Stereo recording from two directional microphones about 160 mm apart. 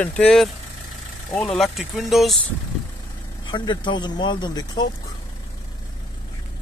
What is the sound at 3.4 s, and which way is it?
Speech, 25° left (ahead or behind).